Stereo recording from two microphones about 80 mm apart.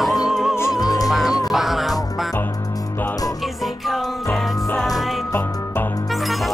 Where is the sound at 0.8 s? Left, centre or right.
Left.